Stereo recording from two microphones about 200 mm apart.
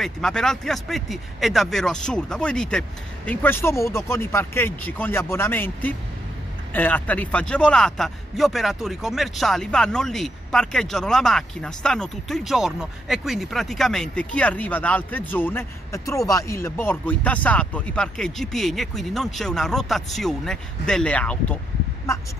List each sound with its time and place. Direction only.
0.0 s a man's voice: centre (ahead or behind)